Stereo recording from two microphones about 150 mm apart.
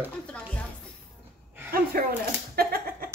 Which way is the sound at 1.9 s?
70° right (ahead or behind).